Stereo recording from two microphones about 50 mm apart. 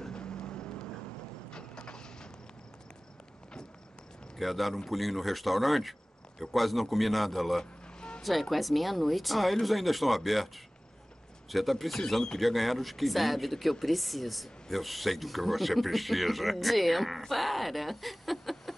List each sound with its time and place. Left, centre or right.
0.0 s vehicle: centre
4.4 s speech: centre